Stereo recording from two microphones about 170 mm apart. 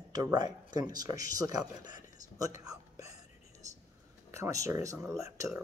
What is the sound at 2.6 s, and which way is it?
Whispering, 20° right (ahead or behind).